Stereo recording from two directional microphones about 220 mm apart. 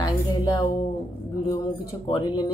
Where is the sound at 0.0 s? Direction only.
15° left (ahead or behind).